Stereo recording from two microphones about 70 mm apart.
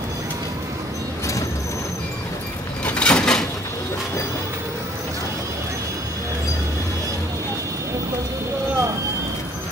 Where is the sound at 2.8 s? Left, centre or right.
Centre.